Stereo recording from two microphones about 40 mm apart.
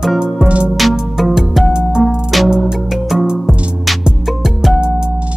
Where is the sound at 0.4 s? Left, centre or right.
Centre.